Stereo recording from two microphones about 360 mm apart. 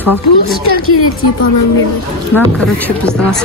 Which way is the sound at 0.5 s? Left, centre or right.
Left.